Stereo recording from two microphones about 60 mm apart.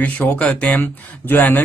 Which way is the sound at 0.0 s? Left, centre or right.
Left.